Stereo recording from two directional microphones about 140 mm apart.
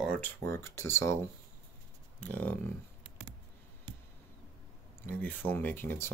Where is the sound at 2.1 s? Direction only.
10° left (ahead or behind).